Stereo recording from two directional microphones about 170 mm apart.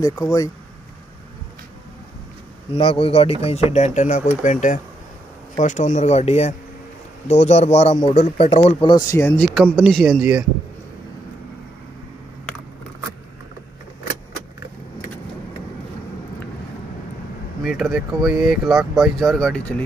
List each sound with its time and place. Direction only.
0.0 s speech: 20° left (ahead or behind)
2.7 s speech: 30° left (ahead or behind)
8.8 s speech: 25° left (ahead or behind)
9.4 s speech: centre (ahead or behind)
17.6 s speech: centre (ahead or behind)